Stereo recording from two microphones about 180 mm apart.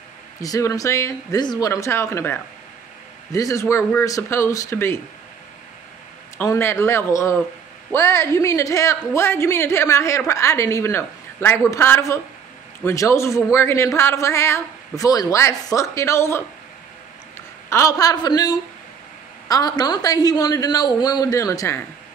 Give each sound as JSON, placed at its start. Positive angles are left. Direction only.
{"t": 0.4, "sound": "a man's voice", "side_deg": 20}
{"t": 6.3, "sound": "a man's voice", "side_deg": 15}
{"t": 17.6, "sound": "speech", "side_deg": 15}